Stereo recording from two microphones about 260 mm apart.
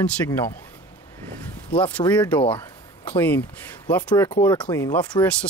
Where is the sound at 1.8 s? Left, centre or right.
Centre.